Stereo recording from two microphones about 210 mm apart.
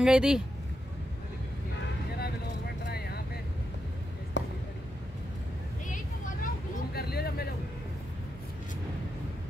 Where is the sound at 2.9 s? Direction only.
50° left (ahead or behind).